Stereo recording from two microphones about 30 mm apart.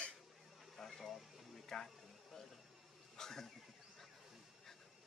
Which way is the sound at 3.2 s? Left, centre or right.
Centre.